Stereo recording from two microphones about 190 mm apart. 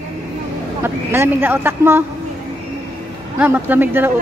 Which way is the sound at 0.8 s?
10° right (ahead or behind).